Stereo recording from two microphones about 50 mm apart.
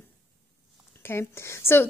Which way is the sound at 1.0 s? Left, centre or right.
Left.